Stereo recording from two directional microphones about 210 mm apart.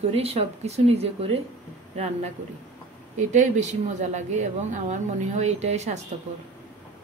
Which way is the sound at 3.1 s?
35° right (ahead or behind).